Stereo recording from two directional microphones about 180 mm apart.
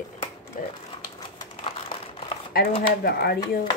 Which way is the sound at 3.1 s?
60° left (ahead or behind).